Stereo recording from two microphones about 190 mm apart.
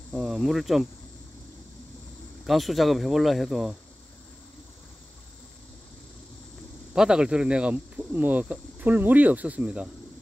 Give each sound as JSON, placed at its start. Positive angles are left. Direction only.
{"t": 0.1, "sound": "speech", "side_deg": 0}
{"t": 2.4, "sound": "speech", "side_deg": 0}
{"t": 6.9, "sound": "speech", "side_deg": -5}